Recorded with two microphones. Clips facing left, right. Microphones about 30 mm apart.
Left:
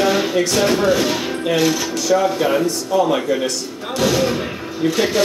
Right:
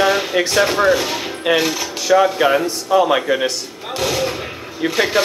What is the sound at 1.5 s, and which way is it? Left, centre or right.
Speech, centre.